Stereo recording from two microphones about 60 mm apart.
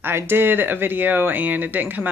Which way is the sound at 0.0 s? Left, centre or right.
Right.